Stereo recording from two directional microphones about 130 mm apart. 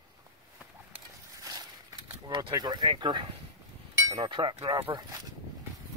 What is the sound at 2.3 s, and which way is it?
Speech, 35° right (ahead or behind).